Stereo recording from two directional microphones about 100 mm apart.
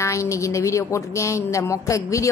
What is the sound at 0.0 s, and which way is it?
A woman's voice, 30° left (ahead or behind).